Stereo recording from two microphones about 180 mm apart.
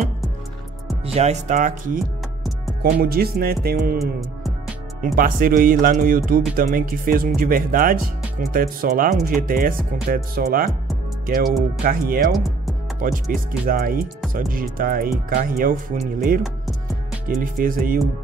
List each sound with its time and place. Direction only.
1.0 s speech: 35° right (ahead or behind)
2.8 s speech: 55° right (ahead or behind)
4.0 s music: centre (ahead or behind)
5.0 s speech: 50° right (ahead or behind)